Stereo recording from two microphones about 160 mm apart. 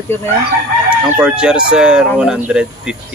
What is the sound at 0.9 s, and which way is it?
Speech, 5° right (ahead or behind).